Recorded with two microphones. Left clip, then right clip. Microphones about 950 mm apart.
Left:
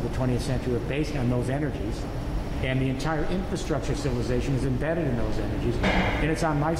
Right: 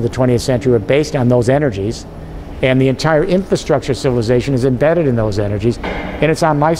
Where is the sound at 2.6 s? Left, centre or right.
Right.